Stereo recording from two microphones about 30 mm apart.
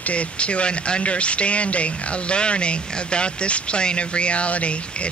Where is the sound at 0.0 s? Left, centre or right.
Left.